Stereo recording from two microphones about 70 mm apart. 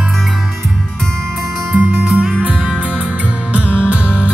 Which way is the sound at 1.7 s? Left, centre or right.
Centre.